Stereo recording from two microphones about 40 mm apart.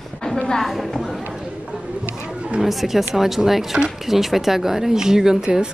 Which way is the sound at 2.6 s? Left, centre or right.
Centre.